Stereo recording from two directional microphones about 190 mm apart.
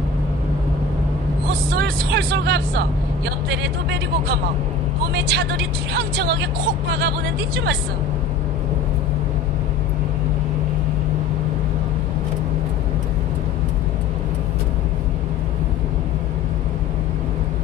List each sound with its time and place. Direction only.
1.8 s vehicle: 60° right (ahead or behind)
5.1 s speech: 60° right (ahead or behind)